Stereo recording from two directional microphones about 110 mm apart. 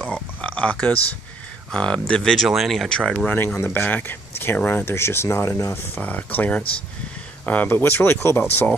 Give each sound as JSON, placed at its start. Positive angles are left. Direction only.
{"t": 0.0, "sound": "oink", "side_deg": 10}
{"t": 1.7, "sound": "speech", "side_deg": 10}
{"t": 3.3, "sound": "speech", "side_deg": 20}